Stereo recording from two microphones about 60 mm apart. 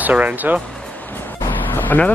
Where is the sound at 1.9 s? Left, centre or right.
Left.